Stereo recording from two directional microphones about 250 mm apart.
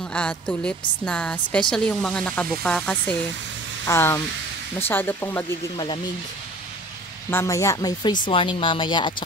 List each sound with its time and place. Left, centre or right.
0.1 s a woman's voice: centre
7.2 s speech: centre